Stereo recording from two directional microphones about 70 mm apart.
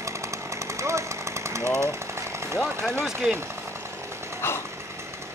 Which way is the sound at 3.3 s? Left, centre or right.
Right.